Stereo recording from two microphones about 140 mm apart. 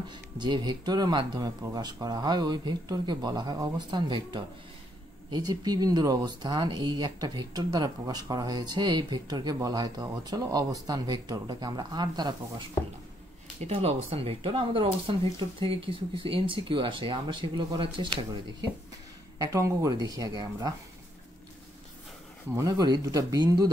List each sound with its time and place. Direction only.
0.1 s speech: 30° right (ahead or behind)
13.6 s speech: 45° right (ahead or behind)
19.3 s speech: 25° right (ahead or behind)
22.6 s speech: 30° right (ahead or behind)